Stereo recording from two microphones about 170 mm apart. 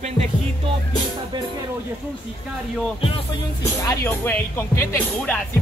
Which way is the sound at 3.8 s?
15° left (ahead or behind).